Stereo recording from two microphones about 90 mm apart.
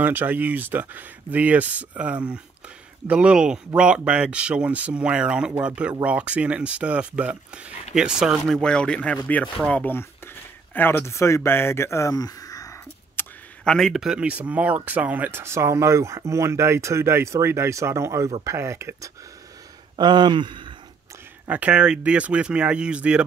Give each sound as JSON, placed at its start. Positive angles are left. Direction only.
{"t": 0.0, "sound": "speech", "side_deg": -20}
{"t": 8.5, "sound": "speech", "side_deg": 5}
{"t": 13.2, "sound": "a sound", "side_deg": 25}
{"t": 13.7, "sound": "speech", "side_deg": 5}
{"t": 20.0, "sound": "speech", "side_deg": -55}
{"t": 21.5, "sound": "speech", "side_deg": -15}